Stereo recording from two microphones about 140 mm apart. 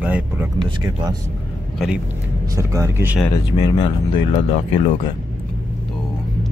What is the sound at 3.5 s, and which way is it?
Speech, 30° left (ahead or behind).